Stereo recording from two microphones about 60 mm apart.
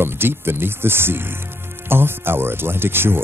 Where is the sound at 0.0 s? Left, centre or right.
Right.